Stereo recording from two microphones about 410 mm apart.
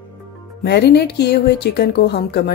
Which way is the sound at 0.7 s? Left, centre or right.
Left.